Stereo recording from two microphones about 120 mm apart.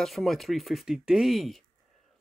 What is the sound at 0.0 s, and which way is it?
Speech, centre (ahead or behind).